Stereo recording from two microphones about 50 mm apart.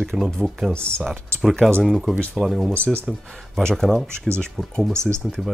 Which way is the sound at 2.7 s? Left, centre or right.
Left.